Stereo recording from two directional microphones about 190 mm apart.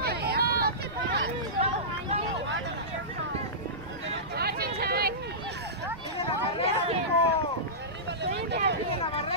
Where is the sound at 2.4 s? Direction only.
70° right (ahead or behind).